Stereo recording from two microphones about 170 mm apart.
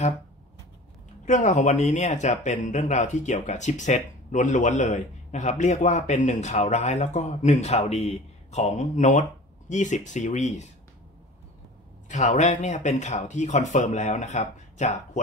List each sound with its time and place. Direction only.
1.2 s speech: 45° left (ahead or behind)
12.1 s speech: 45° left (ahead or behind)